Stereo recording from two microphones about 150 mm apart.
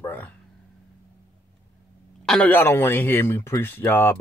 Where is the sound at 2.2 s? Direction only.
5° left (ahead or behind).